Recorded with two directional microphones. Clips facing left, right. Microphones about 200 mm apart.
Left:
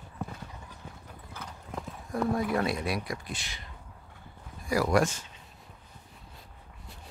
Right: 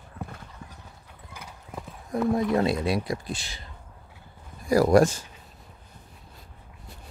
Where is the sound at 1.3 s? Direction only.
10° right (ahead or behind).